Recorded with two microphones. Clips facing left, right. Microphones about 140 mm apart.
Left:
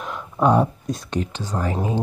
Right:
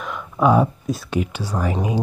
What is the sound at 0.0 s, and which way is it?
Speech, centre (ahead or behind).